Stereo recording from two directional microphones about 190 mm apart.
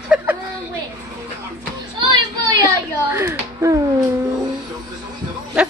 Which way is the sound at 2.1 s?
20° right (ahead or behind).